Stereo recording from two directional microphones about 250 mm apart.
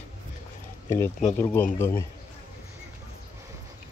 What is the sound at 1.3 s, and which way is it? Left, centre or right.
Speech, centre.